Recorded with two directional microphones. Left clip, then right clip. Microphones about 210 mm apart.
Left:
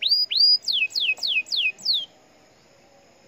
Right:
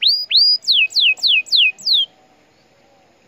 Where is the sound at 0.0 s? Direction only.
30° right (ahead or behind).